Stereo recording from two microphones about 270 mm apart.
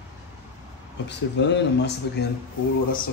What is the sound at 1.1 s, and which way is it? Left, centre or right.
Speech, left.